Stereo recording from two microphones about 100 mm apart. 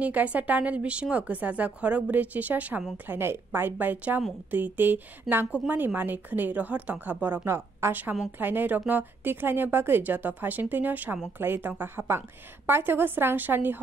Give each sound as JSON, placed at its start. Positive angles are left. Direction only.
{"t": 0.0, "sound": "a woman's voice", "side_deg": -15}